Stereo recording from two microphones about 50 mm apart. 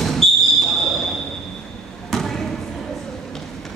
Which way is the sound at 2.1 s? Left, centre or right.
Centre.